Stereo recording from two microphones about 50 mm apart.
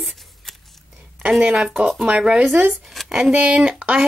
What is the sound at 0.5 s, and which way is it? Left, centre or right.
Scissors, centre.